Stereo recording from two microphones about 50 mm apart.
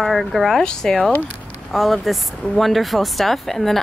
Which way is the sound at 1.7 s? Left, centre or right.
Centre.